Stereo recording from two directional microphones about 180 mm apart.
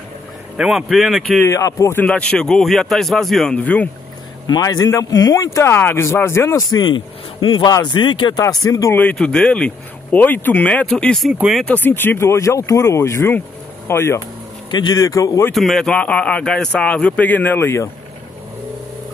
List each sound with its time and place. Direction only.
0.6 s a man's voice: centre (ahead or behind)
1.4 s a man's voice: 15° left (ahead or behind)
4.5 s speech: 20° left (ahead or behind)
8.9 s a man's voice: 5° left (ahead or behind)
14.7 s speech: 25° left (ahead or behind)
15.5 s speech: centre (ahead or behind)